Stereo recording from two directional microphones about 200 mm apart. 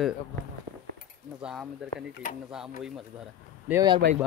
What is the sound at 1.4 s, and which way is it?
Speech, 5° right (ahead or behind).